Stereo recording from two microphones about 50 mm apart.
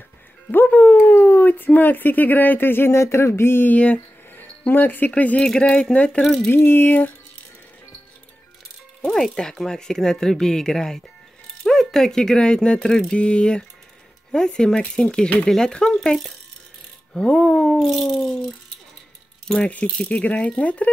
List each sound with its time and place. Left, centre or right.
0.7 s speech: left
2.9 s a sound: left
3.6 s speech: left
4.4 s speech: left; by 6.2 s centre
6.5 s a sound: left
9.1 s speech: centre
17.1 s speech: centre
19.4 s speech: centre